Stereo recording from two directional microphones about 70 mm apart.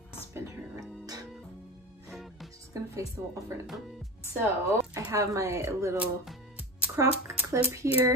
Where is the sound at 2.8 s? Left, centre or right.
Right.